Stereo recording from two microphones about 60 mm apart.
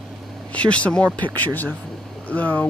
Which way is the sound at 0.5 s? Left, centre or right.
Left.